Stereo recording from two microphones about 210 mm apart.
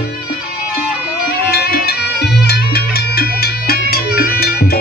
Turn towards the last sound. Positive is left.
turn(degrees=45)  # may be behind; listen again after turning